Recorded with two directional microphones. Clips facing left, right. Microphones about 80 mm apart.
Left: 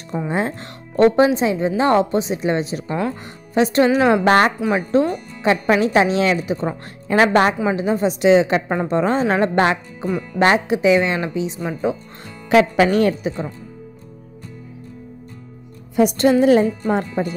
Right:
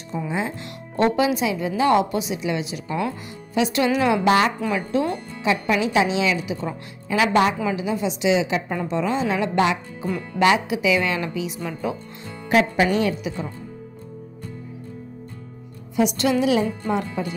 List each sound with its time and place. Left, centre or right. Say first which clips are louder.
0.3 s speech: left 5 dB; left
0.9 s speech: left 6 dB; left
4.3 s a woman's voice: left 2 dB; left
4.6 s speech: left 5 dB; left
5.4 s a woman's voice: left 5 dB; left
7.1 s a woman's voice: left 4 dB; left
7.6 s a woman's voice: left 5 dB; left
11.0 s speech: left 4 dB; left
12.4 s speech: left 5 dB; left
13.2 s speech: left 5 dB; left
16.0 s a woman's voice: left 5 dB; left